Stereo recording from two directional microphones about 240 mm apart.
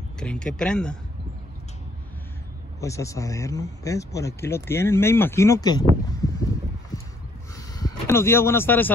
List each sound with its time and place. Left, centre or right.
0.2 s speech: centre
2.8 s speech: centre
6.9 s a sound: centre
7.5 s vehicle: centre